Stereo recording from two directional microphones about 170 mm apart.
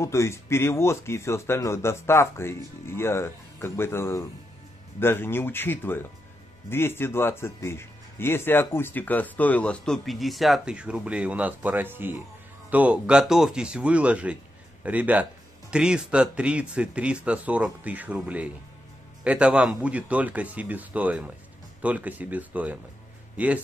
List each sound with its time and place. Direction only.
0.0 s a man's voice: 15° left (ahead or behind); by 23.6 s 10° right (ahead or behind)